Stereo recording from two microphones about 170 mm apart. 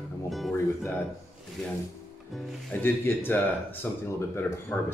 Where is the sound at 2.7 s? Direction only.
10° left (ahead or behind).